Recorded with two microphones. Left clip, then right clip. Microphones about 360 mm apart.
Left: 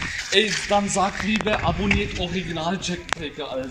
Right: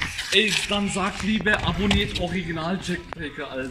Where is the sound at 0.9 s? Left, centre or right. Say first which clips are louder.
Left 4 dB; left.